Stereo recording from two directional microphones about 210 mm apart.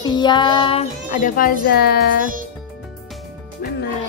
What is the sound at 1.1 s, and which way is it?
Speech, 40° left (ahead or behind).